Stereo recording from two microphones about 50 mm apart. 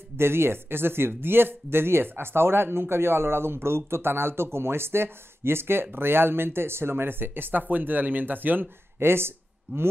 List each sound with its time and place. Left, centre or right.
0.2 s speech: right